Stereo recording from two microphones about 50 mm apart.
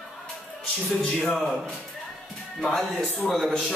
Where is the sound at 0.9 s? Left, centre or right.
Centre.